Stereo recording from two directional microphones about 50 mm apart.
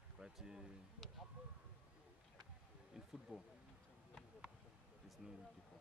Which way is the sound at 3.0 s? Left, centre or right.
Centre.